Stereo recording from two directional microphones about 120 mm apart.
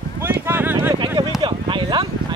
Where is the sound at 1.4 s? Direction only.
35° right (ahead or behind).